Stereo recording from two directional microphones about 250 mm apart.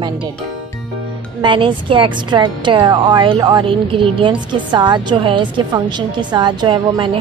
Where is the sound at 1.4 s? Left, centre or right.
Centre.